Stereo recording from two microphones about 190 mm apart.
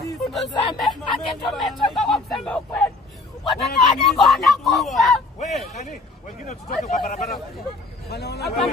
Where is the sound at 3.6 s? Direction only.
Centre (ahead or behind).